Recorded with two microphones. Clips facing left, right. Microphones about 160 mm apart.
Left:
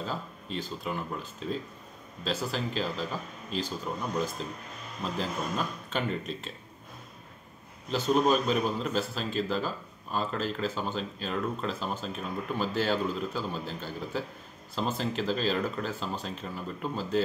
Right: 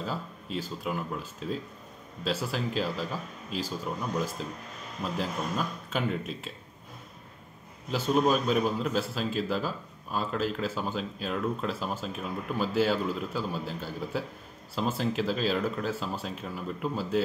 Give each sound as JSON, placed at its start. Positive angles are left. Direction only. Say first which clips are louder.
{"t": 0.0, "sound": "speech", "louder": "right 1 dB", "side_deg": -5}
{"t": 7.9, "sound": "speech", "louder": "even", "side_deg": -5}